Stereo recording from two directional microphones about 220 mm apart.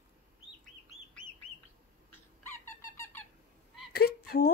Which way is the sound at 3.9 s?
45° left (ahead or behind).